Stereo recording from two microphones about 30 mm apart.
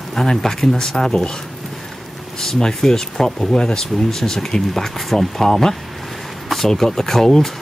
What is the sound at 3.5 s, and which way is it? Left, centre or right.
Speech, left.